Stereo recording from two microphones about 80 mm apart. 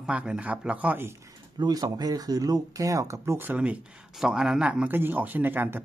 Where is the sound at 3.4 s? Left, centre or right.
Centre.